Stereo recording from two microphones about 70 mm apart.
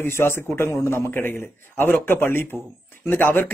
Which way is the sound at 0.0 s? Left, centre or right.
Left.